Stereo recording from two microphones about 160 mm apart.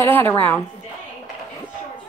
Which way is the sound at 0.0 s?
15° left (ahead or behind).